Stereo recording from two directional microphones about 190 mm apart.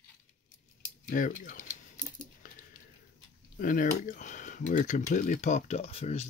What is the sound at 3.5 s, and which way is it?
Speech, 45° left (ahead or behind).